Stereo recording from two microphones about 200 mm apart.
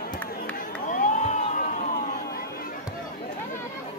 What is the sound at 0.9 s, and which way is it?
Crowd, 40° left (ahead or behind).